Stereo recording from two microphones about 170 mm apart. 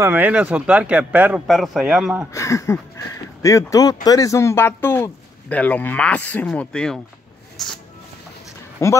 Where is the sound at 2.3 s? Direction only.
15° left (ahead or behind); by 7.7 s centre (ahead or behind).